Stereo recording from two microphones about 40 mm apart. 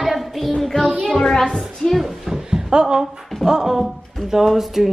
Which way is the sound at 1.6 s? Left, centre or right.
Centre.